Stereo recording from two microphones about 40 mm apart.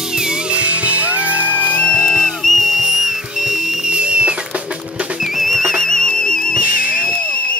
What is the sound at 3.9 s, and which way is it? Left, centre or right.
Music, right.